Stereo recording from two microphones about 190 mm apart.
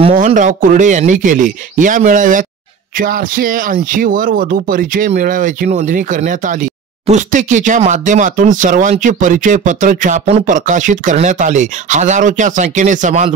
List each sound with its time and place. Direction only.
0.1 s speech: 40° right (ahead or behind)